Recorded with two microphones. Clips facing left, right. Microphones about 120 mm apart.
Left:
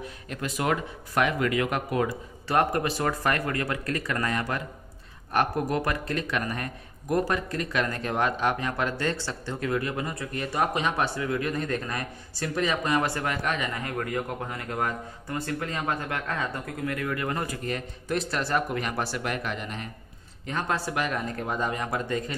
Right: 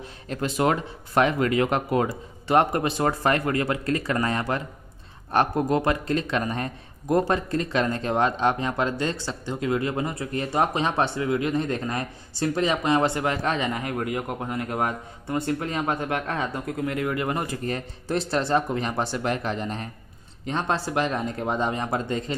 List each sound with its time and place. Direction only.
0.0 s speech: 30° right (ahead or behind)
13.8 s speech: 15° right (ahead or behind)
17.6 s speech: 30° right (ahead or behind)